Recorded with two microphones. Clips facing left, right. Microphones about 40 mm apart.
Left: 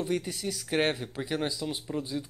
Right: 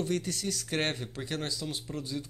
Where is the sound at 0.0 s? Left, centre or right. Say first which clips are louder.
Left 1 dB; centre.